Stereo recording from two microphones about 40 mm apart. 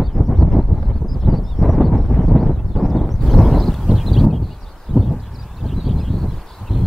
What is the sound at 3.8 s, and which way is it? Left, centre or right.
Horse, centre.